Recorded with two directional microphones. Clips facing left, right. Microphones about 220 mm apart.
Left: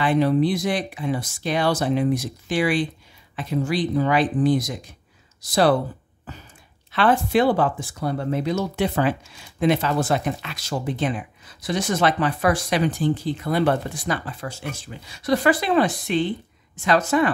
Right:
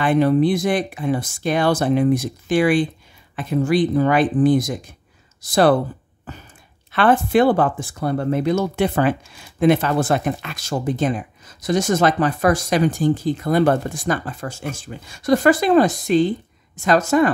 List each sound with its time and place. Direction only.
0.0 s speech: 50° right (ahead or behind)
6.9 s speech: 55° right (ahead or behind)